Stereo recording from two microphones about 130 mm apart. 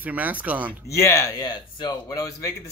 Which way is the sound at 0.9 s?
25° left (ahead or behind).